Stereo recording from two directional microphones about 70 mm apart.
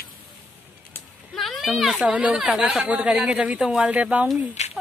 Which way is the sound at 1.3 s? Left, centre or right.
Centre.